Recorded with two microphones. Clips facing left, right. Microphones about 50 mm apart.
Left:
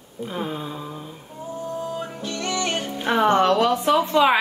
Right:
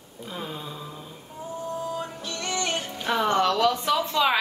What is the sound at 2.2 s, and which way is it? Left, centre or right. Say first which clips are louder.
Music: left 4 dB; left.